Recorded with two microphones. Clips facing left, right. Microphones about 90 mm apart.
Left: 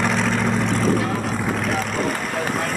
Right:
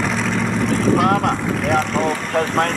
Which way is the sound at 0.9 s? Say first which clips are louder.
Right 6 dB; 70° right (ahead or behind).